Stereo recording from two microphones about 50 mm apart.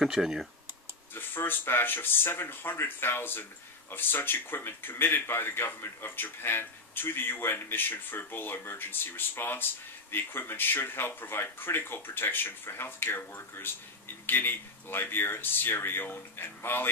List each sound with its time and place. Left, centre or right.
0.0 s speech: centre
1.1 s speech: left